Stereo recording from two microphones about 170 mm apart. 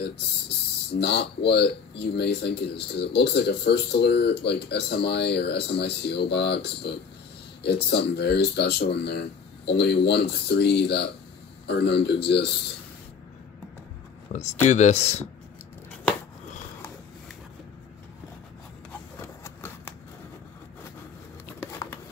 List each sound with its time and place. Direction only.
0.9 s speech: 80° left
14.3 s speech: 40° left (ahead or behind)
19.2 s a sound: 15° left (ahead or behind)